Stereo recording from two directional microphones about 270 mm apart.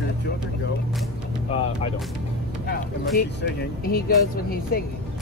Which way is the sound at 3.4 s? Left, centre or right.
Left.